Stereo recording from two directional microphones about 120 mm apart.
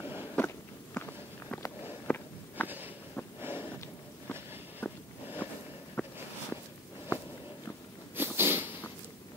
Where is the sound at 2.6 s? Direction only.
15° right (ahead or behind).